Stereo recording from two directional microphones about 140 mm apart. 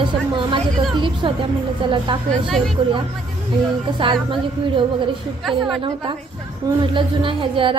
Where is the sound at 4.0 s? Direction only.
35° right (ahead or behind).